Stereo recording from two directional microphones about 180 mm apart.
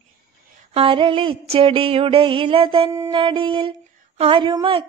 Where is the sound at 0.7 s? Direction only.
30° right (ahead or behind).